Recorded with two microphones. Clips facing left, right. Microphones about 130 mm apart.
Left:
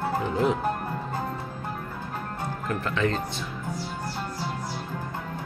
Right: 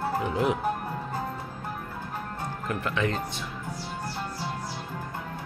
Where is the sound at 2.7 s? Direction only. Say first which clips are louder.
Left 2 dB; 15° right (ahead or behind).